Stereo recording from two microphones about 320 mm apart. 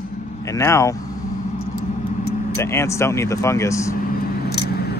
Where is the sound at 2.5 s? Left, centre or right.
Centre.